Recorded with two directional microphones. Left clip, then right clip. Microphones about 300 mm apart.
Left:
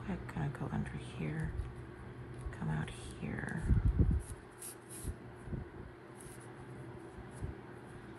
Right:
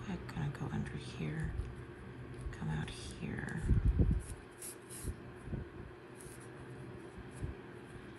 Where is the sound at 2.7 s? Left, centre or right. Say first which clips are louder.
Left 1 dB; centre.